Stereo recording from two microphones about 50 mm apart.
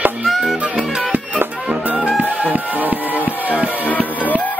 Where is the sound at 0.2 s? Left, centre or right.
Centre.